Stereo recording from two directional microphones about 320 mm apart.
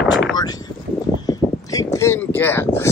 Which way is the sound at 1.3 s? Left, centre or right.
Centre.